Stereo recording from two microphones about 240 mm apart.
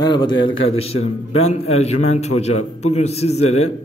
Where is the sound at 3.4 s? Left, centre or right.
Left.